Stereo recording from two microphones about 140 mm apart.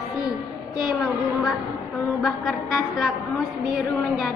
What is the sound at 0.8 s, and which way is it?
A woman's voice, 5° right (ahead or behind).